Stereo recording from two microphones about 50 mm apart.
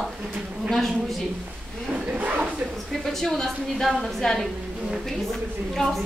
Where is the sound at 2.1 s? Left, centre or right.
Right.